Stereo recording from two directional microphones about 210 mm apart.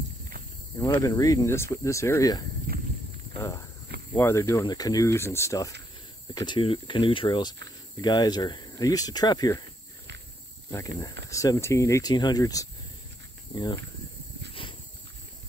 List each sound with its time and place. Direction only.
0.7 s speech: 15° left (ahead or behind)
2.7 s walk: 45° right (ahead or behind)
4.1 s speech: 15° left (ahead or behind)
11.2 s speech: 15° left (ahead or behind)
14.5 s a sound: 25° left (ahead or behind)